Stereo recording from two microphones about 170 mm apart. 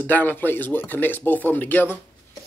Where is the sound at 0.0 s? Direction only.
10° left (ahead or behind).